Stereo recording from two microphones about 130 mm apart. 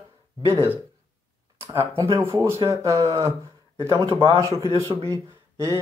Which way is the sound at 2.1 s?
20° right (ahead or behind).